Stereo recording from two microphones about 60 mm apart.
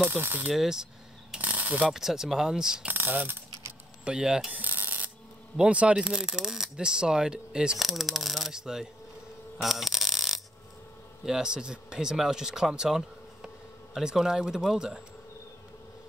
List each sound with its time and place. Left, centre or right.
0.0 s speech: right
0.5 s speech: centre
1.4 s a sound: right
1.9 s speech: centre
2.8 s speech: right
4.0 s speech: centre
4.5 s rub: right
5.6 s speech: right
9.6 s a sound: centre
11.2 s speech: centre